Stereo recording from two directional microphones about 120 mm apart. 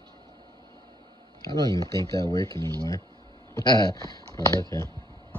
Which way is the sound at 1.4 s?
30° left (ahead or behind).